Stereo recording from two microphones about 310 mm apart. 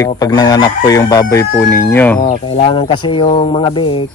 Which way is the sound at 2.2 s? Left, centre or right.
Centre.